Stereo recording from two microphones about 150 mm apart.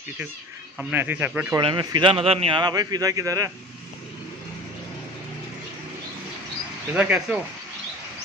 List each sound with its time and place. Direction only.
0.7 s speech: 10° right (ahead or behind)
1.6 s a man's voice: 30° right (ahead or behind)
6.9 s speech: 10° right (ahead or behind)